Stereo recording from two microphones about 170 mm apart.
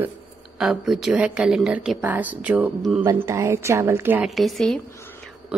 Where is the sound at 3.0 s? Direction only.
15° right (ahead or behind).